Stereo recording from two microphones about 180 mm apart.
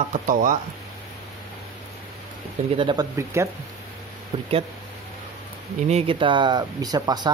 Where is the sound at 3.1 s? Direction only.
15° right (ahead or behind).